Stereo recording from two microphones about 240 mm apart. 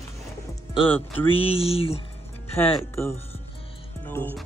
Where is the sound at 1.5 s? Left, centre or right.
Left.